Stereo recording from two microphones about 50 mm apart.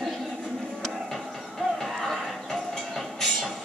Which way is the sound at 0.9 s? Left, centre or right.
Centre.